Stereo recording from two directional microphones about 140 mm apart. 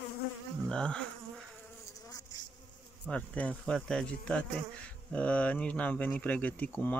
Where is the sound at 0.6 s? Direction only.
5° left (ahead or behind).